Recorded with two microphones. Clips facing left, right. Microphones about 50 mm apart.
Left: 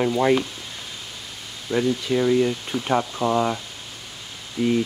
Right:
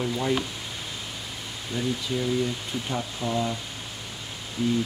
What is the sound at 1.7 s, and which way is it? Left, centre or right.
Speech, left.